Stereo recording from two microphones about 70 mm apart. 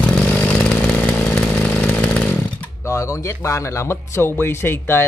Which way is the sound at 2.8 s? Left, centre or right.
Left.